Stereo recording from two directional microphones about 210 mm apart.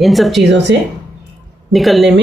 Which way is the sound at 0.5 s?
55° right (ahead or behind).